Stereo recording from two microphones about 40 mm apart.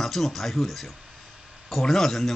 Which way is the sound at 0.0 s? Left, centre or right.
Centre.